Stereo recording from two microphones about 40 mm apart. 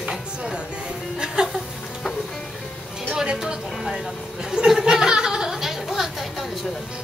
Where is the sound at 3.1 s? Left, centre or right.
Centre.